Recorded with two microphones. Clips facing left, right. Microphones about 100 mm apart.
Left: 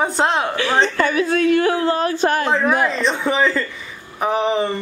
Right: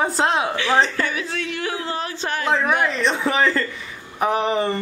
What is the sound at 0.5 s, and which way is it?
Speech, 50° left (ahead or behind).